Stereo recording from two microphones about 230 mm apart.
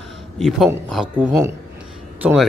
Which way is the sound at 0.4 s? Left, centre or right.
Centre.